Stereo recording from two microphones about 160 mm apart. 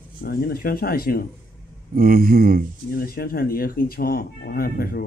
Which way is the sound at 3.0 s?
65° left (ahead or behind).